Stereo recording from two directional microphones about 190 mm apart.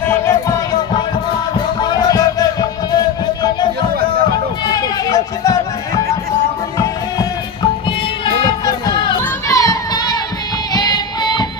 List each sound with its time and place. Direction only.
0.2 s music: 20° left (ahead or behind)
4.6 s music: 20° left (ahead or behind)
8.6 s music: 20° left (ahead or behind)